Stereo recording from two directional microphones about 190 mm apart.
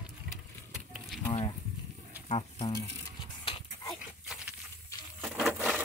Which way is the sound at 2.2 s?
30° left (ahead or behind).